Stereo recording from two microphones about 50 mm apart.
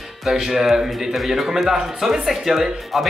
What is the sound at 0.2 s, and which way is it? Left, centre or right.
Speech, centre.